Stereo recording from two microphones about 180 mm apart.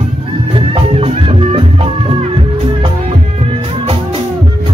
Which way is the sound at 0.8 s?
30° right (ahead or behind).